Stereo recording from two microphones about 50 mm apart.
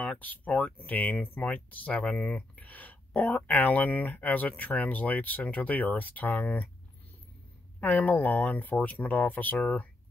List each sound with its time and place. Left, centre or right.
0.0 s speech: left
7.8 s speech: left